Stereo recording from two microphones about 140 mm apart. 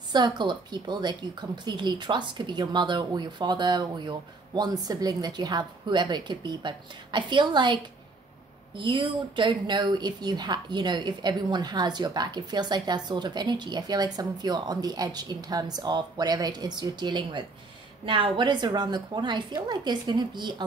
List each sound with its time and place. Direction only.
0.1 s speech: 30° right (ahead or behind)